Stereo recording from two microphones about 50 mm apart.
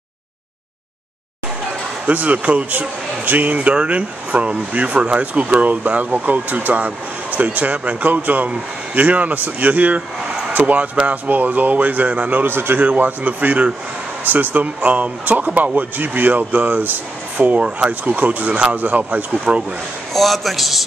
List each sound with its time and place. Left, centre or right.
2.0 s speech: right
12.8 s speech: right
19.5 s speech: centre
20.1 s a man's voice: centre